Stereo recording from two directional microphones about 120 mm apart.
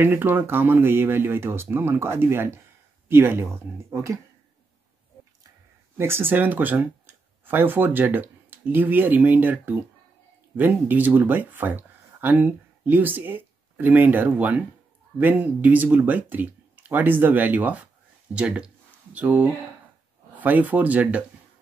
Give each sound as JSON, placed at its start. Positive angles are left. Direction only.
{"t": 0.0, "sound": "speech", "side_deg": -15}
{"t": 5.9, "sound": "speech", "side_deg": -20}
{"t": 10.9, "sound": "speech", "side_deg": -15}